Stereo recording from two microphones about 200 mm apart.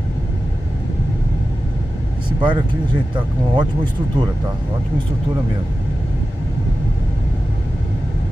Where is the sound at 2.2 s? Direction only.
25° right (ahead or behind).